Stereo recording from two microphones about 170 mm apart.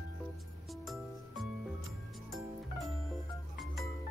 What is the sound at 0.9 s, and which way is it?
Music, centre (ahead or behind).